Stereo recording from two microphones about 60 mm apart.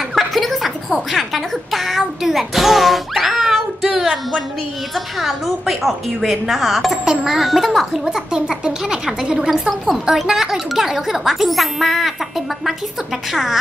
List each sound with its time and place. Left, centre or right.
0.1 s a sound: centre
1.1 s a child's voice: centre
9.5 s speech: centre